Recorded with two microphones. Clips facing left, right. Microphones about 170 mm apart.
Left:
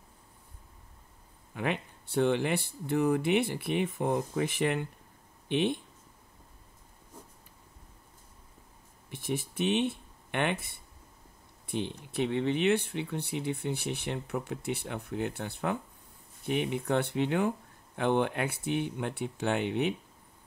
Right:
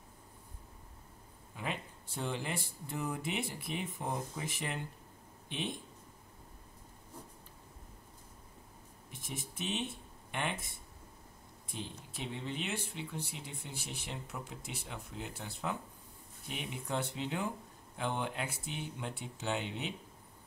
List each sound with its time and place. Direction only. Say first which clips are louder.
1.5 s speech: left 8 dB; 65° left (ahead or behind)
9.1 s speech: left 11 dB; 70° left (ahead or behind)